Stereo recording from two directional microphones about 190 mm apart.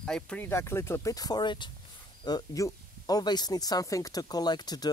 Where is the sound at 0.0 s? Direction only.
5° left (ahead or behind).